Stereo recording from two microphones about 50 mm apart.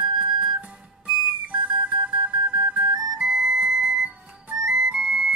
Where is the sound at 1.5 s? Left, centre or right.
Right.